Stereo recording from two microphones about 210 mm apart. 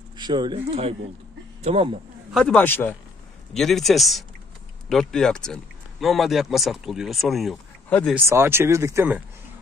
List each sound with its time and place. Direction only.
0.2 s speech: 20° right (ahead or behind)
2.3 s a man's voice: 5° left (ahead or behind)
8.3 s speech: 10° right (ahead or behind)